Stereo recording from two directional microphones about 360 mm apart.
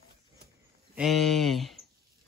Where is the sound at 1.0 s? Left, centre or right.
Centre.